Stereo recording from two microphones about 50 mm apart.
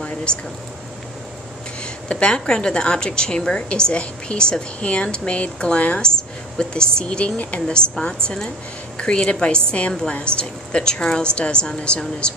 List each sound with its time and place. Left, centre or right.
0.3 s speech: centre
1.8 s a woman's voice: left